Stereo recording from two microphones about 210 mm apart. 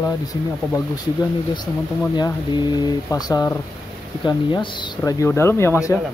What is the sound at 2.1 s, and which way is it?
Speech, 20° left (ahead or behind).